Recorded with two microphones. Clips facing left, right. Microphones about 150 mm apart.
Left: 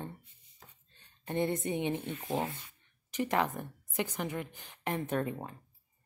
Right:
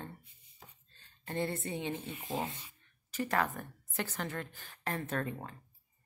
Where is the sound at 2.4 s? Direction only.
20° right (ahead or behind).